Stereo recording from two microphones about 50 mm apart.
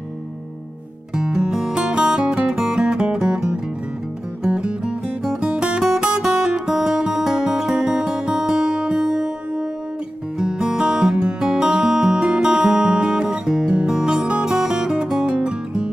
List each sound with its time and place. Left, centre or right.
1.1 s music: centre